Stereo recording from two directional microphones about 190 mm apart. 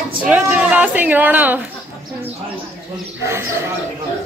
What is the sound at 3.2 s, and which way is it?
Speech, 15° right (ahead or behind).